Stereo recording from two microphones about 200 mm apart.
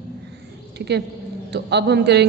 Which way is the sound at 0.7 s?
55° right (ahead or behind).